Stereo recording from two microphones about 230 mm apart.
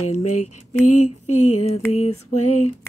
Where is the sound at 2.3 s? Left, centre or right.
Left.